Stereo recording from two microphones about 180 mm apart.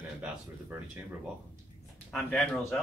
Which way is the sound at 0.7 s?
10° right (ahead or behind).